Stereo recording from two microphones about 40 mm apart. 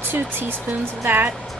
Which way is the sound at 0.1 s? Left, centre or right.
Right.